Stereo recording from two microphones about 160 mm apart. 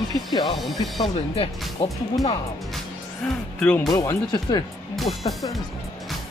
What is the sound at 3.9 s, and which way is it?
Speech, 20° left (ahead or behind).